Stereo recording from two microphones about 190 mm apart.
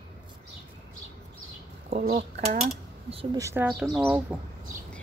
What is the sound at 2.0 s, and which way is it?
Speech, 50° right (ahead or behind).